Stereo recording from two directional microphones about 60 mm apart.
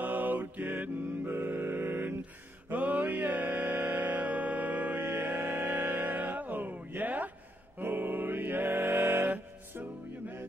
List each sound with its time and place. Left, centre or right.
0.0 s mantra: right
2.7 s music: right